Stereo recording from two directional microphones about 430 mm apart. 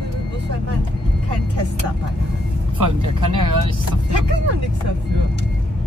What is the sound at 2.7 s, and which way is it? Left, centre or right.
Vehicle, right.